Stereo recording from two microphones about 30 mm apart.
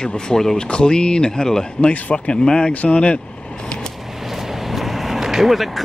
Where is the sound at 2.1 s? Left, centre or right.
Left.